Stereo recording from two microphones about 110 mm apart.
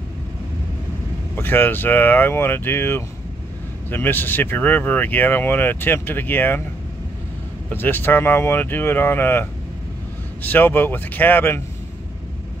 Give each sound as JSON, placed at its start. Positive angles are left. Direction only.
{"t": 1.3, "sound": "speech", "side_deg": 20}
{"t": 7.7, "sound": "speech", "side_deg": 20}